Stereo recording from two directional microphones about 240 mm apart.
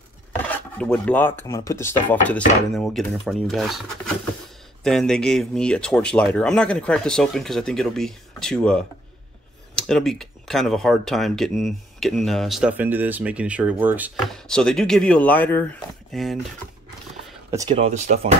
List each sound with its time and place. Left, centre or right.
0.5 s speech: centre
17.5 s speech: centre